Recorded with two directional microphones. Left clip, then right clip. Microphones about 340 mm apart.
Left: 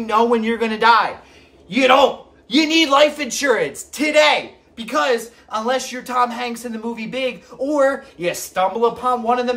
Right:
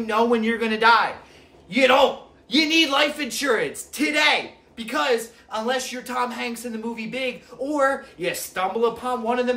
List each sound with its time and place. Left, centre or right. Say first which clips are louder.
0.0 s a man's voice: left 4 dB; centre